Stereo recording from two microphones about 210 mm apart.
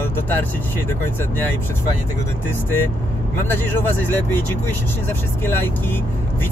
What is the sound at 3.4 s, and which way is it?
Speech, 10° left (ahead or behind).